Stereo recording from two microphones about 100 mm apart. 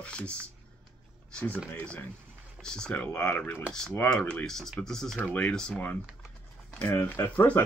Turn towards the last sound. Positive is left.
turn(degrees=15)  # may be behind; listen again after turning